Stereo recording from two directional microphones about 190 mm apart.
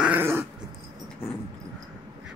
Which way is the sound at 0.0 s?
10° right (ahead or behind).